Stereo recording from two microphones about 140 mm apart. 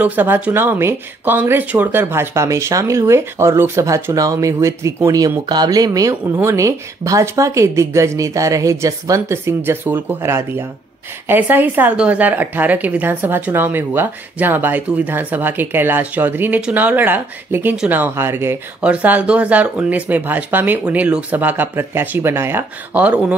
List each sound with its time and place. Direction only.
0.0 s a woman's voice: 10° right (ahead or behind)